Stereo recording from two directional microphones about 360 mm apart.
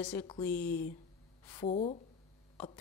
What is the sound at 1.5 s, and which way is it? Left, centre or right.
Speech, centre.